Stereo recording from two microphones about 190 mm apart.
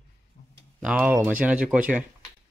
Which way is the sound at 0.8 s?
10° right (ahead or behind).